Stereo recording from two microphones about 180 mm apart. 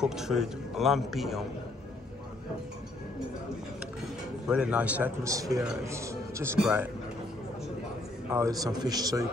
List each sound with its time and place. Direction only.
0.0 s a man's voice: 5° right (ahead or behind)
4.5 s a man's voice: 5° right (ahead or behind)
8.3 s a man's voice: 15° right (ahead or behind)